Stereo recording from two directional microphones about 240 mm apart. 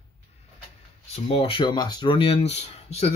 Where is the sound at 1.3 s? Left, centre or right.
Left.